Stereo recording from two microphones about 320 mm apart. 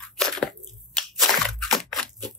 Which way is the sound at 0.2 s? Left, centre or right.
Centre.